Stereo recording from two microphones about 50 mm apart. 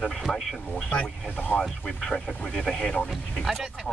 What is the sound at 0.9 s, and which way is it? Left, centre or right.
Speech, left.